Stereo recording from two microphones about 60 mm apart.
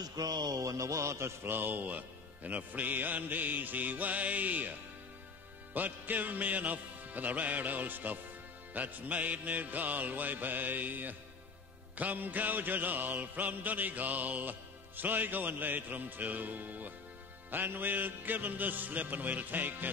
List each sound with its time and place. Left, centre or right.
0.0 s mantra: right
5.7 s music: right
12.0 s mantra: right
13.6 s music: right
17.5 s mantra: right